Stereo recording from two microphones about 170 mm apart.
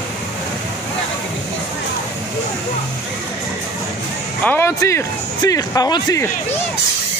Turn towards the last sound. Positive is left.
turn(degrees=20)  # may be behind; listen again after turning